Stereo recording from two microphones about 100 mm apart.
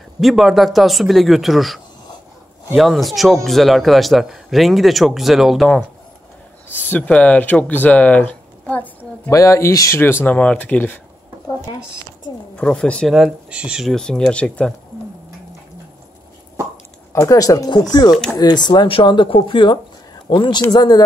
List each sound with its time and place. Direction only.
0.2 s speech: centre (ahead or behind)
6.9 s speech: 15° left (ahead or behind)
9.3 s speech: 30° left (ahead or behind)
12.5 s speech: 10° left (ahead or behind)
13.1 s speech: 10° right (ahead or behind)
13.8 s speech: 5° left (ahead or behind)
17.1 s speech: 35° left (ahead or behind)
18.1 s speech: 5° left (ahead or behind)
18.4 s speech: 45° left (ahead or behind)